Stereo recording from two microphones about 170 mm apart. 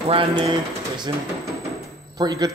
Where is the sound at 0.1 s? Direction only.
30° right (ahead or behind).